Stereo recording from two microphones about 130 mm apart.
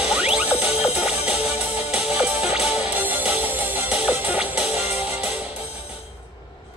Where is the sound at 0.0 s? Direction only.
10° right (ahead or behind).